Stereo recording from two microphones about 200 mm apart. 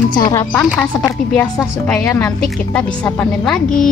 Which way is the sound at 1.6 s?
5° left (ahead or behind).